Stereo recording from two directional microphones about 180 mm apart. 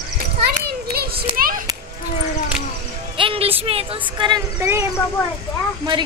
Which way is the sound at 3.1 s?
30° right (ahead or behind).